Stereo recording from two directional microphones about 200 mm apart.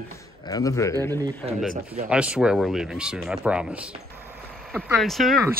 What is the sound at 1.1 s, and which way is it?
Speech, 20° right (ahead or behind).